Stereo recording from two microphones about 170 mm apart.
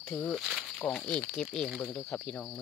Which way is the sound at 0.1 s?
5° left (ahead or behind).